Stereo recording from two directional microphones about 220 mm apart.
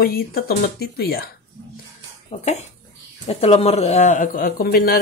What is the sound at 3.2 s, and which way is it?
Speech, 30° left (ahead or behind).